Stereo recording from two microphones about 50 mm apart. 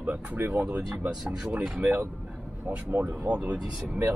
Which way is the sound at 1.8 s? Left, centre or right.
Right.